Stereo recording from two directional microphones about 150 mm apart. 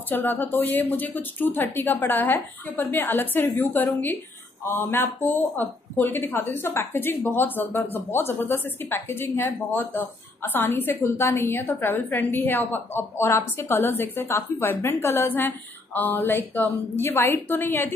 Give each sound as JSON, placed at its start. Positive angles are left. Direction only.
{"t": 0.1, "sound": "a woman's voice", "side_deg": 15}